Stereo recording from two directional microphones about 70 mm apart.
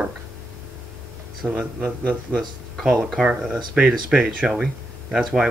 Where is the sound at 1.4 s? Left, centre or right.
Centre.